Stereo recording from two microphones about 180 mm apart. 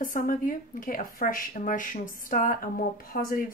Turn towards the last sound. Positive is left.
turn(degrees=50)  # may be behind; listen again after turning